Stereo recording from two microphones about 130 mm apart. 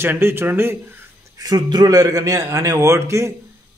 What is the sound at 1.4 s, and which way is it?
A man's voice, 30° right (ahead or behind).